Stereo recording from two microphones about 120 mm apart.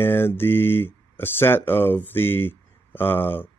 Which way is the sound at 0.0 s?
20° left (ahead or behind).